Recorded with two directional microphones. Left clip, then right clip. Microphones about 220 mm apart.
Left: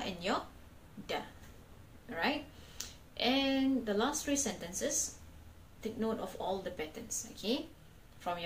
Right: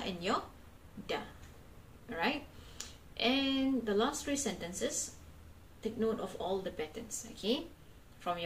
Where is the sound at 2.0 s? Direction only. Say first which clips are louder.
Even; 20° right (ahead or behind).